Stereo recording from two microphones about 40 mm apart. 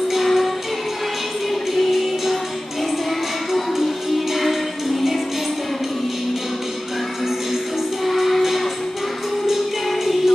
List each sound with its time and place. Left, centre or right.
0.1 s music: centre
1.5 s music: centre
3.7 s music: centre
8.0 s music: centre